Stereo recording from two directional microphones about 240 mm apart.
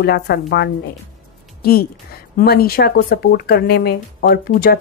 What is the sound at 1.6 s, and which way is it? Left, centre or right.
A woman's voice, left.